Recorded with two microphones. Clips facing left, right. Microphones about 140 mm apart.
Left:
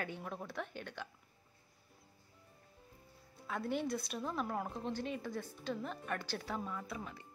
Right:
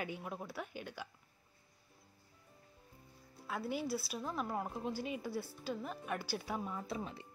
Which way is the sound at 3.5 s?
5° right (ahead or behind).